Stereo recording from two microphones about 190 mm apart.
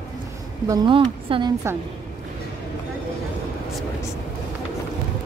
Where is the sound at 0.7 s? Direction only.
25° right (ahead or behind).